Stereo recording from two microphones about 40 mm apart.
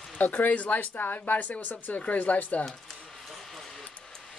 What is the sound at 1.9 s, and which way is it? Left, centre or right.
Speech, left.